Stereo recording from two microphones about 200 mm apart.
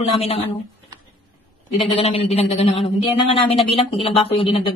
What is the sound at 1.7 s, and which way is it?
A woman's voice, 30° left (ahead or behind).